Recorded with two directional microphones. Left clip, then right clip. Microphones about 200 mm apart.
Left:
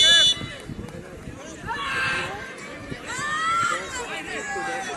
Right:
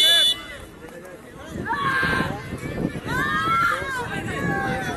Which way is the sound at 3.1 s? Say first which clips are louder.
Right 2 dB; 30° left (ahead or behind).